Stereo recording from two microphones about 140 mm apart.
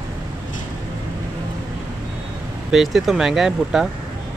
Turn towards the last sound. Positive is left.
turn(degrees=-5)  # may be behind; listen again after turning